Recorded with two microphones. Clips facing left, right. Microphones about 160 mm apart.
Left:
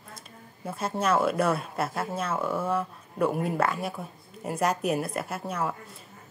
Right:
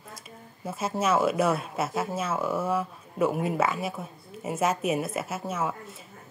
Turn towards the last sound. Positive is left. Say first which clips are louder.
# right 1 dB
turn(degrees=0)  # may be behind; listen again after turning